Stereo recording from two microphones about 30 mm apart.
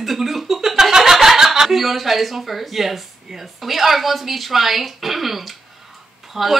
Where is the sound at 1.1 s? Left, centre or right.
Centre.